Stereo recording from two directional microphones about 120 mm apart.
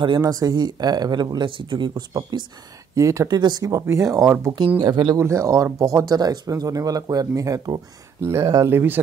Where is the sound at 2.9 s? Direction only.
25° right (ahead or behind).